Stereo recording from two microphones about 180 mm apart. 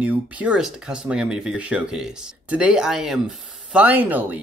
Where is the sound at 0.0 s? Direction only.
10° right (ahead or behind).